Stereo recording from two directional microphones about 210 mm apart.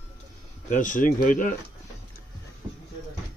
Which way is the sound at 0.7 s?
40° left (ahead or behind).